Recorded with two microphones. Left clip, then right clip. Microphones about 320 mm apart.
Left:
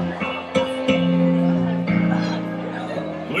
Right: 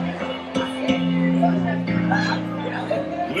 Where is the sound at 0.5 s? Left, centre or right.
Centre.